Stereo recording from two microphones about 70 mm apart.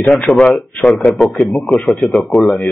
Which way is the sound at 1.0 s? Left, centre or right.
Centre.